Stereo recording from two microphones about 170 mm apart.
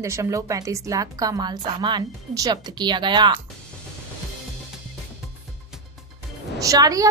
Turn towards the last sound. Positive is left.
turn(degrees=-20)  # may be behind; listen again after turning